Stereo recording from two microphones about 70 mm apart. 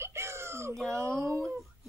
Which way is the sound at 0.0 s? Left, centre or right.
Right.